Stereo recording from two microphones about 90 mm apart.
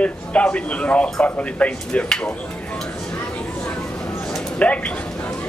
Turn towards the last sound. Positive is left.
turn(degrees=15)  # may be behind; listen again after turning